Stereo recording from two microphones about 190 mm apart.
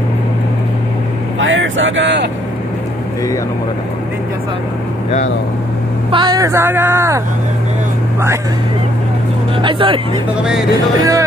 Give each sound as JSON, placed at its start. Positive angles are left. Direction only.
{"t": 1.4, "sound": "speech", "side_deg": -80}
{"t": 6.1, "sound": "speech", "side_deg": -20}
{"t": 9.6, "sound": "speech", "side_deg": -25}